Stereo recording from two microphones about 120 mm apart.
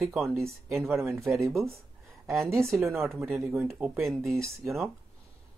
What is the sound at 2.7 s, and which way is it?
Speech, centre (ahead or behind).